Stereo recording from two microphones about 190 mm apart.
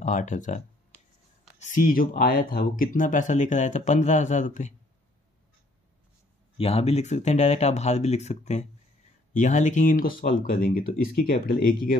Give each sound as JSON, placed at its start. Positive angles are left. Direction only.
{"t": 0.0, "sound": "speech", "side_deg": 40}
{"t": 1.6, "sound": "speech", "side_deg": 40}
{"t": 6.6, "sound": "speech", "side_deg": 30}